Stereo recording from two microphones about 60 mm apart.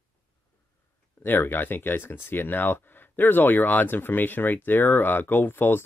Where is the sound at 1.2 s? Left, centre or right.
Left.